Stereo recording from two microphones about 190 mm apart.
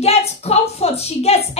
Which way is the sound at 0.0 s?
35° left (ahead or behind).